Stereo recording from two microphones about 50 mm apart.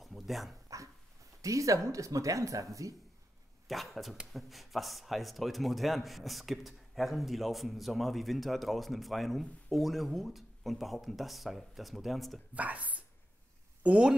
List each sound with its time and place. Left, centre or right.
0.0 s dog: centre
1.4 s speech: right
3.6 s a man's voice: centre
12.5 s speech: right
13.8 s a woman's voice: centre